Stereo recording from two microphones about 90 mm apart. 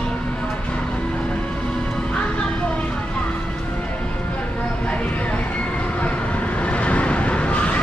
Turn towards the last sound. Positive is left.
turn(degrees=15)  # may be behind; listen again after turning